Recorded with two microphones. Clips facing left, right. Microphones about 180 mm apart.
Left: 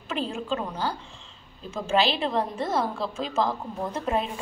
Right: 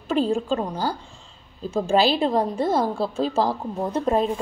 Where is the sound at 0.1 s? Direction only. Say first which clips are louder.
Right 7 dB; 35° right (ahead or behind).